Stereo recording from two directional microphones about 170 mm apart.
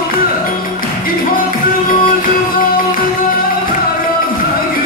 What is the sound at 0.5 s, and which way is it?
Music, 55° left (ahead or behind).